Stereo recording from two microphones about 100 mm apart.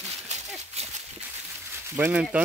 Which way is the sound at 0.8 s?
90° right.